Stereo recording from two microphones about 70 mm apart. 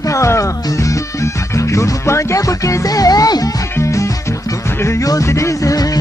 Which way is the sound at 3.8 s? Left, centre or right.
Left.